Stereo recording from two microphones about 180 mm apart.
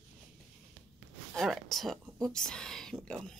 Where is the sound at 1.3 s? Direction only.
Centre (ahead or behind).